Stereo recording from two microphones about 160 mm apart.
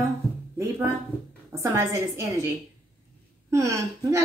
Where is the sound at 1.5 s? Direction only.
15° right (ahead or behind).